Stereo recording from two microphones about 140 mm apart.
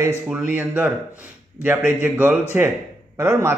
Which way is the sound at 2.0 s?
15° right (ahead or behind).